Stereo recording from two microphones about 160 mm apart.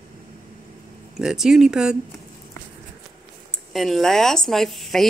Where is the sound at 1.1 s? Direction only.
5° right (ahead or behind).